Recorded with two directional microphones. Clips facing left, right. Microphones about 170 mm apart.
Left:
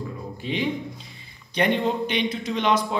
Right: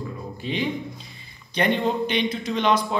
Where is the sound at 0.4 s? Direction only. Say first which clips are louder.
Even; 15° left (ahead or behind).